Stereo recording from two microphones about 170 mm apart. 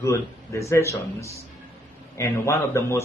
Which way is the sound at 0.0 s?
15° left (ahead or behind).